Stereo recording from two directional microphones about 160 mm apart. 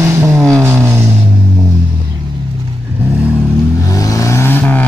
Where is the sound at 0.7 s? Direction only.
15° right (ahead or behind).